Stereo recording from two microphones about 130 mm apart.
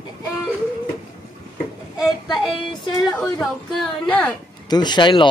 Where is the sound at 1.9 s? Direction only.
Centre (ahead or behind).